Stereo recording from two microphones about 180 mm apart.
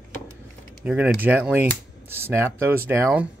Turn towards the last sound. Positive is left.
turn(degrees=-15)  # may be behind; listen again after turning